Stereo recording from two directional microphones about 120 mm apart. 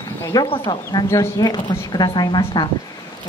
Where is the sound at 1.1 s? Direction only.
30° left (ahead or behind).